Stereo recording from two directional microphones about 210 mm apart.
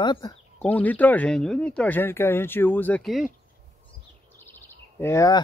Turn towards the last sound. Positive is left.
turn(degrees=15)  # may be behind; listen again after turning